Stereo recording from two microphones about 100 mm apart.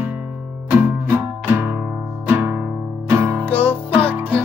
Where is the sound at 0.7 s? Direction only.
20° right (ahead or behind).